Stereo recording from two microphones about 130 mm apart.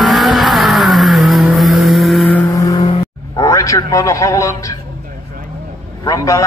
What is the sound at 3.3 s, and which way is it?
A man's voice, 25° left (ahead or behind).